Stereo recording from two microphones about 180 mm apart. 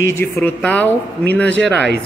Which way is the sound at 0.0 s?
15° left (ahead or behind).